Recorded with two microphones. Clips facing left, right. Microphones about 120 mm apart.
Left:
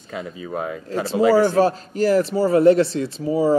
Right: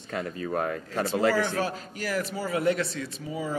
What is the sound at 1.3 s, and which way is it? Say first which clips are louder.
Speech: left 11 dB; 35° left (ahead or behind).